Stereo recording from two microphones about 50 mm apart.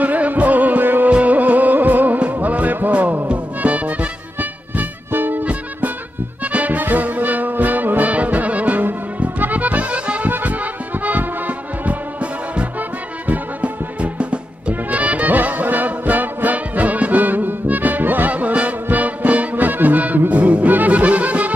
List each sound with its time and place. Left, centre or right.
0.0 s music: right
4.4 s music: right
5.4 s music: right
9.4 s accordion: right
13.3 s music: right